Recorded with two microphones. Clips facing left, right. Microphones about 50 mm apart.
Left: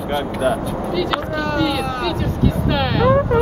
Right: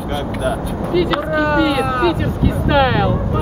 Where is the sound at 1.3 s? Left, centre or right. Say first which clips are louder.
Right 6 dB; centre.